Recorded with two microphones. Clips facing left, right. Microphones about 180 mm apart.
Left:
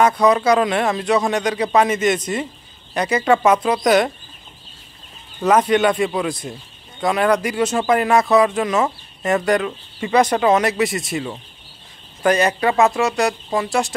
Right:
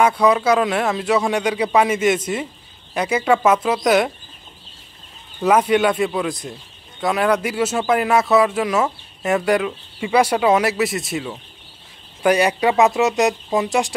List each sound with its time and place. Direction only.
0.0 s speech: 5° right (ahead or behind)
5.4 s speech: 5° right (ahead or behind)
12.2 s speech: 10° right (ahead or behind)